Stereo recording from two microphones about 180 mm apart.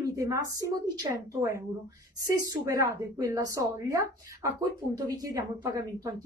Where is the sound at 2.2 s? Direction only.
20° right (ahead or behind).